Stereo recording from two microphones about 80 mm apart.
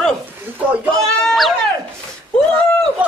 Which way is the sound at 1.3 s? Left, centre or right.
Centre.